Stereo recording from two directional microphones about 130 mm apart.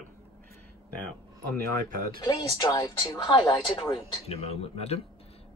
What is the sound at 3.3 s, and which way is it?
Speech, 40° left (ahead or behind).